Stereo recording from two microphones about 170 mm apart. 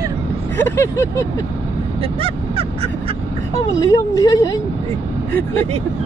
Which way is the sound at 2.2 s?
35° right (ahead or behind).